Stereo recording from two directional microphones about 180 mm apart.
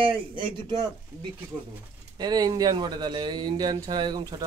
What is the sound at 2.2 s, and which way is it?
Speech, 20° right (ahead or behind).